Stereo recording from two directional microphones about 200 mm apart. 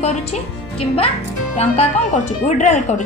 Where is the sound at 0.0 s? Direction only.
30° left (ahead or behind).